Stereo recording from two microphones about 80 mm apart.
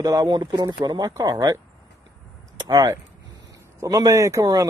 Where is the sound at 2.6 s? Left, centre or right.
Right.